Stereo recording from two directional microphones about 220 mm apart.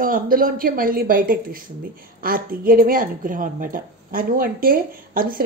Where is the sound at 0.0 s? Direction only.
40° right (ahead or behind).